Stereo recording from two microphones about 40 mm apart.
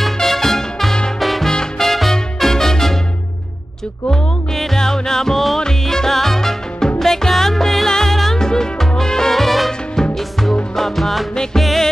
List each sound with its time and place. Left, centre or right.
0.0 s music: centre
1.5 s music: centre
1.9 s music: centre
4.1 s music: centre
10.8 s music: centre